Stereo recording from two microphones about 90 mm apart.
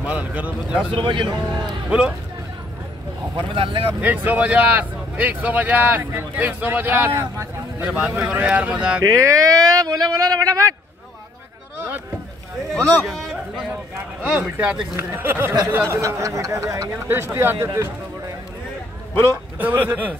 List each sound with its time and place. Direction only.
0.0 s speech: 15° right (ahead or behind)
0.9 s speech: 65° right (ahead or behind)
1.9 s speech: 10° right (ahead or behind)
3.3 s speech: 75° right (ahead or behind)
4.0 s speech: 20° right (ahead or behind)
9.2 s speech: 40° right (ahead or behind)
13.0 s speech: centre (ahead or behind)
14.4 s speech: 15° right (ahead or behind); by 16.8 s 35° right (ahead or behind)
17.1 s speech: 25° right (ahead or behind)
19.6 s speech: 20° right (ahead or behind)